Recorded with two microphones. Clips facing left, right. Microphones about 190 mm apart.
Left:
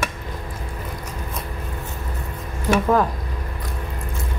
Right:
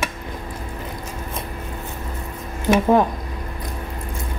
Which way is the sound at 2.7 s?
25° right (ahead or behind).